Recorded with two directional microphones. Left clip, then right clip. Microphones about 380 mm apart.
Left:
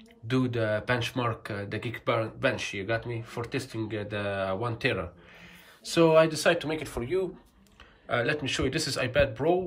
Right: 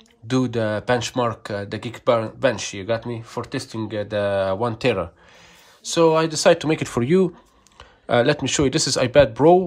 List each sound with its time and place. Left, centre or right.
0.3 s speech: centre